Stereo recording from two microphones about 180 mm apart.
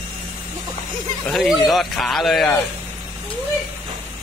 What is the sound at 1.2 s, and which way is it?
Speech, centre (ahead or behind).